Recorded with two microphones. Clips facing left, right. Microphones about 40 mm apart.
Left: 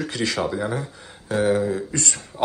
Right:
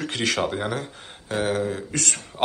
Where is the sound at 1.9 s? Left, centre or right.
Right.